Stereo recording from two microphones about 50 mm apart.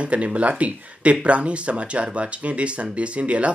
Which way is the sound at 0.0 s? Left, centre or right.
Right.